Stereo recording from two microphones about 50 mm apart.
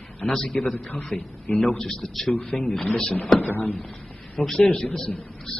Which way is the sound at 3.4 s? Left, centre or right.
Left.